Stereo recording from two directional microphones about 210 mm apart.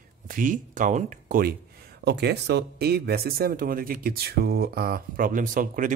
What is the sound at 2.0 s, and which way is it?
Speech, 50° right (ahead or behind).